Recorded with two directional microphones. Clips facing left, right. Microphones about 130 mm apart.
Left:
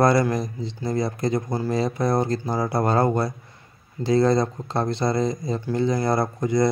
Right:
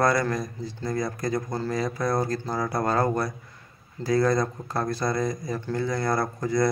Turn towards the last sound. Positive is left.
turn(degrees=20)  # may be behind; listen again after turning